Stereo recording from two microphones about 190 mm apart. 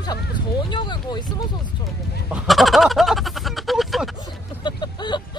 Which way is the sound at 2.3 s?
Centre (ahead or behind).